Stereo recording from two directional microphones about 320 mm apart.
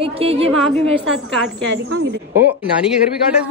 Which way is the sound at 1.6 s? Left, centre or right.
Right.